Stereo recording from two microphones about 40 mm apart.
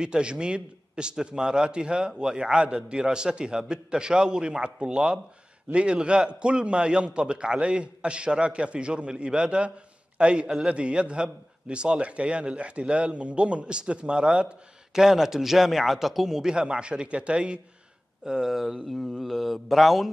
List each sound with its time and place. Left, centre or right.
0.0 s a man's voice: right
15.0 s a man's voice: centre
16.5 s a man's voice: right
18.2 s a man's voice: centre